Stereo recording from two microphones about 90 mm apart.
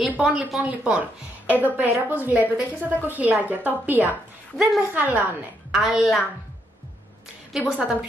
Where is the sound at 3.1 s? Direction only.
20° right (ahead or behind).